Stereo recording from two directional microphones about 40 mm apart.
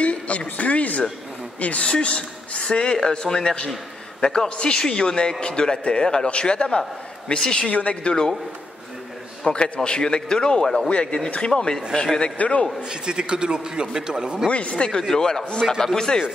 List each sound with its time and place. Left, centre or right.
0.0 s speech: left
7.7 s speech: left
9.4 s a man's voice: left
10.9 s a man's voice: left
12.9 s a man's voice: right
14.5 s a man's voice: left
14.9 s speech: centre